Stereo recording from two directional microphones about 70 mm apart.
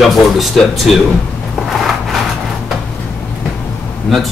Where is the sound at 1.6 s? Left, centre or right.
Centre.